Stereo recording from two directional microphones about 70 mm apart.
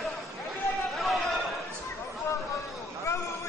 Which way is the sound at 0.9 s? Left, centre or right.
Centre.